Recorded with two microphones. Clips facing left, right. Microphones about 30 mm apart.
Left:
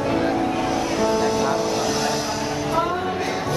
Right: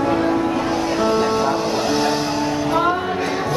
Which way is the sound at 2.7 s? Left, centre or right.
Right.